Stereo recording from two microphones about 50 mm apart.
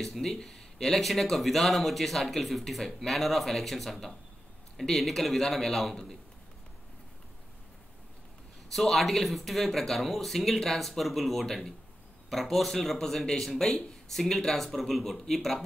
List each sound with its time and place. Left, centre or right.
0.0 s speech: centre
8.7 s speech: centre